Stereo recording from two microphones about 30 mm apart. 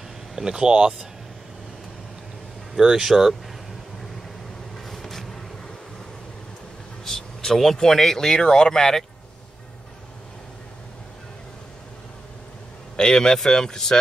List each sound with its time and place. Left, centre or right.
0.4 s speech: right
2.8 s speech: centre
3.1 s speech: centre
4.7 s vehicle: centre
7.1 s vehicle: centre
7.8 s speech: centre
12.9 s speech: left